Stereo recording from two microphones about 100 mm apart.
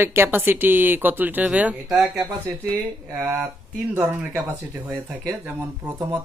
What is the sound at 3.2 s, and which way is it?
Speech, 25° right (ahead or behind).